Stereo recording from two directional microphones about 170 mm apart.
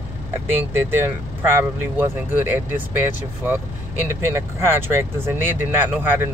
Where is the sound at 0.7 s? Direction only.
10° right (ahead or behind).